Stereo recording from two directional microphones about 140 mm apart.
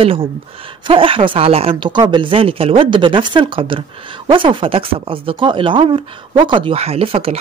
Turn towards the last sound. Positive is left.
turn(degrees=-40)  # may be behind; listen again after turning